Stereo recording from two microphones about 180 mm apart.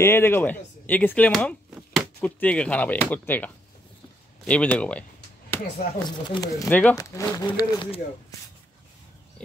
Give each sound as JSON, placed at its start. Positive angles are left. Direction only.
{"t": 0.0, "sound": "chopping", "side_deg": 15}
{"t": 4.5, "sound": "speech", "side_deg": 5}
{"t": 6.0, "sound": "speech", "side_deg": 20}
{"t": 6.7, "sound": "speech", "side_deg": 10}
{"t": 7.0, "sound": "speech", "side_deg": 20}